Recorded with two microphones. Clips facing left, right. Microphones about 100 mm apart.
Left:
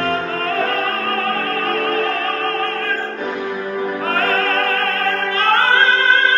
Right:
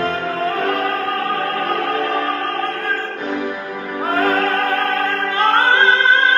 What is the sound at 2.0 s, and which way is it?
Opera, 20° right (ahead or behind).